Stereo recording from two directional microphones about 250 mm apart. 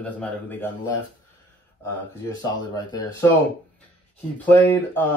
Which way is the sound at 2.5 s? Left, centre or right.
Centre.